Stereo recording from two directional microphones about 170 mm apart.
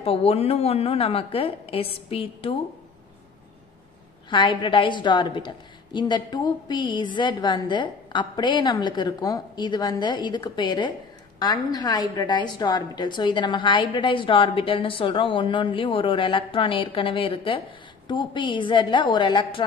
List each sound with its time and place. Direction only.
0.0 s a woman's voice: 35° left (ahead or behind)
4.3 s a woman's voice: 30° left (ahead or behind)